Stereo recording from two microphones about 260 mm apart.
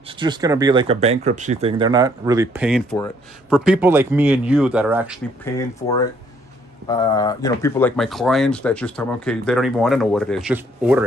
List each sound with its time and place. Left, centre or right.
0.2 s speech: centre
5.4 s speech: centre
6.9 s speech: centre